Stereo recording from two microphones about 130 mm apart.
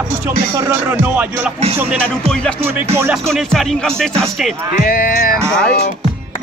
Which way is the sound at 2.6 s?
20° right (ahead or behind).